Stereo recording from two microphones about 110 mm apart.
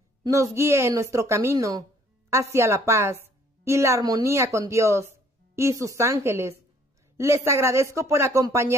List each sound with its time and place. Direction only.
0.2 s a woman's voice: 30° right (ahead or behind)